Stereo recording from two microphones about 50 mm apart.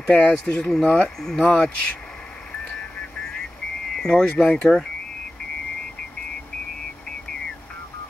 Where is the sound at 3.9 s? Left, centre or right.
Centre.